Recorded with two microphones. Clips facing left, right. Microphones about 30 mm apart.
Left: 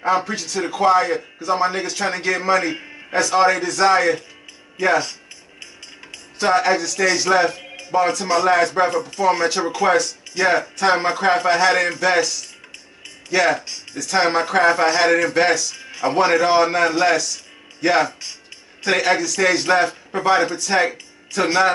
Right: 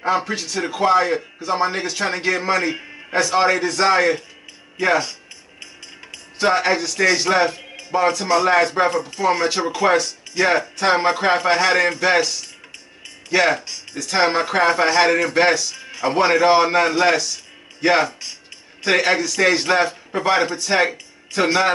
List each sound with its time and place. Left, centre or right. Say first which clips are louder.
0.3 s a man's voice: even; centre
6.1 s a man's voice: left 1 dB; centre
15.7 s a man's voice: even; centre
20.4 s a man's voice: even; centre